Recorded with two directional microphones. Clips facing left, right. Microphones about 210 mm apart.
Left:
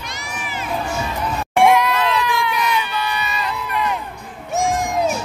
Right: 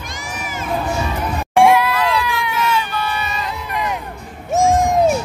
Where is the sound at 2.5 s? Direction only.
15° left (ahead or behind).